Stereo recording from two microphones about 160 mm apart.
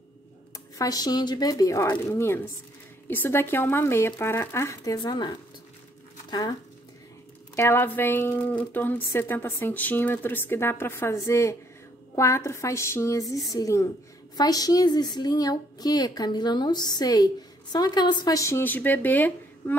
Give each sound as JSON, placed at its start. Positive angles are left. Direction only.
{"t": 0.7, "sound": "a woman's voice", "side_deg": 25}
{"t": 7.5, "sound": "a woman's voice", "side_deg": 15}